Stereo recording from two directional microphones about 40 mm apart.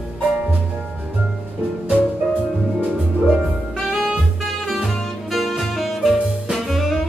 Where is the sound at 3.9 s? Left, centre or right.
Centre.